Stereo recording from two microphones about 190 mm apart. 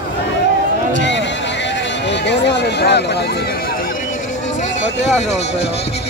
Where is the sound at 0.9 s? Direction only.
70° left (ahead or behind).